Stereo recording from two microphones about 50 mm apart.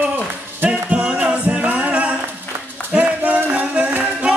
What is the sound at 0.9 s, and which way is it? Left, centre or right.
Music, right.